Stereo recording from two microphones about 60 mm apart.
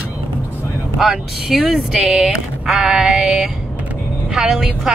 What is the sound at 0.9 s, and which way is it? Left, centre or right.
A woman's voice, centre.